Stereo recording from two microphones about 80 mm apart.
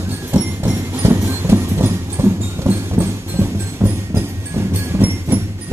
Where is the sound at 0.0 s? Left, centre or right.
Right.